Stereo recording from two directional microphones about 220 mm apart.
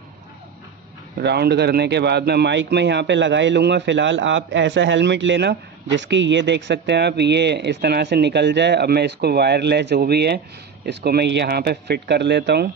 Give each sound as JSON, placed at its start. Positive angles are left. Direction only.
{"t": 1.2, "sound": "a man's voice", "side_deg": -50}